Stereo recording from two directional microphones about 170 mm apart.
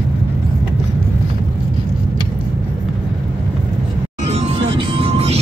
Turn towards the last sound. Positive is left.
turn(degrees=-35)  # may be behind; listen again after turning